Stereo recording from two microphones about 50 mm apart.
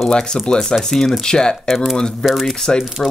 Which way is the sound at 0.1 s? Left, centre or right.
Centre.